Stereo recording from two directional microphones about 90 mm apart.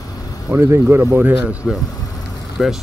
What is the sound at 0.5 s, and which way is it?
Speech, 20° right (ahead or behind).